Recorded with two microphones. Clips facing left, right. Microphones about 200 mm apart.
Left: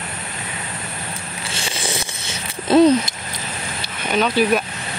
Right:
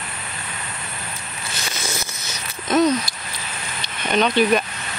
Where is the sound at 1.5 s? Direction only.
30° left (ahead or behind).